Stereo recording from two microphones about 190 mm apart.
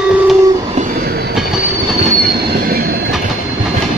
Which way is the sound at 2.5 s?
55° right (ahead or behind).